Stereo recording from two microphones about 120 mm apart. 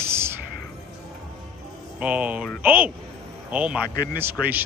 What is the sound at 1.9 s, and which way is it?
A man's voice, 10° right (ahead or behind).